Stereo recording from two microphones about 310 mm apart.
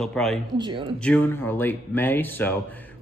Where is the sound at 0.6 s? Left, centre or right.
Centre.